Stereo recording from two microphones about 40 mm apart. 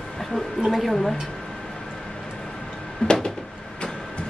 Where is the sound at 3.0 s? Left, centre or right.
Left.